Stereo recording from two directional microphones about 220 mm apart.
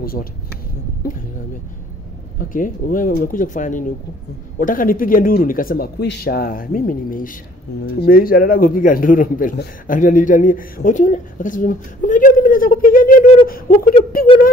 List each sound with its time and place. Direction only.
0.0 s speech: 45° left (ahead or behind)
2.3 s a man's voice: 40° left (ahead or behind)